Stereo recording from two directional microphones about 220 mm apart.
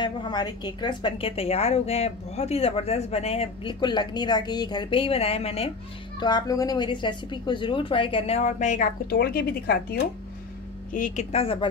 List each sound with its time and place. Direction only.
0.0 s a woman's voice: 20° left (ahead or behind)